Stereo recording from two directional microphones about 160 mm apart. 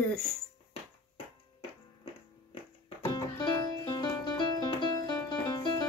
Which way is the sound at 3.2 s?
25° left (ahead or behind).